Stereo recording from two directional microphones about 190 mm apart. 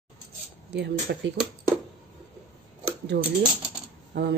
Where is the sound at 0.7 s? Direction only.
60° right (ahead or behind).